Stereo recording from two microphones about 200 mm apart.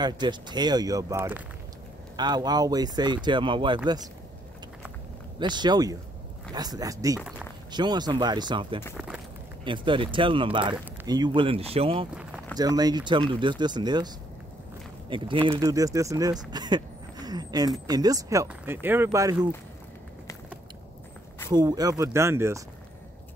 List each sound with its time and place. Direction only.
0.0 s speech: 20° right (ahead or behind)
5.4 s speech: 20° right (ahead or behind)
7.2 s speech: centre (ahead or behind)
7.7 s speech: 20° right (ahead or behind)
8.9 s speech: 5° right (ahead or behind)
9.7 s speech: 25° right (ahead or behind)
12.1 s a sound: 5° right (ahead or behind)
12.5 s speech: 20° right (ahead or behind)
21.5 s speech: 20° right (ahead or behind)